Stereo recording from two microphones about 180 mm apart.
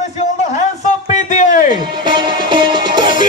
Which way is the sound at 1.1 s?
40° left (ahead or behind).